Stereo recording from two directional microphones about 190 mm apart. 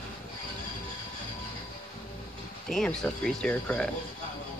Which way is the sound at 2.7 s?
5° left (ahead or behind).